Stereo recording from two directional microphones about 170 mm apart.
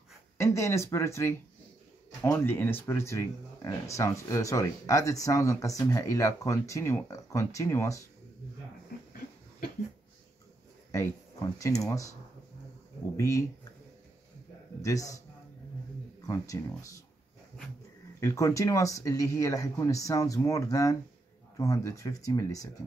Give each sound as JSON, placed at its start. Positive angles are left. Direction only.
{"t": 0.4, "sound": "speech", "side_deg": 15}
{"t": 10.9, "sound": "speech", "side_deg": 20}
{"t": 14.8, "sound": "speech", "side_deg": 20}
{"t": 16.2, "sound": "speech", "side_deg": 20}
{"t": 18.2, "sound": "speech", "side_deg": 20}